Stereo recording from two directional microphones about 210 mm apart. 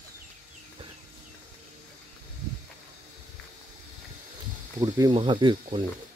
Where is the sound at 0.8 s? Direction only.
25° right (ahead or behind).